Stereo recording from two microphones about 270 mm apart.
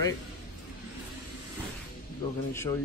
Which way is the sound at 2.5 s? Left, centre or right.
Centre.